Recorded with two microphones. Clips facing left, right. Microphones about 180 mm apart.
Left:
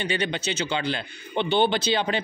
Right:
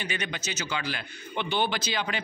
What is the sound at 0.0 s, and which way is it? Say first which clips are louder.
A man's voice: left 7 dB; 30° left (ahead or behind).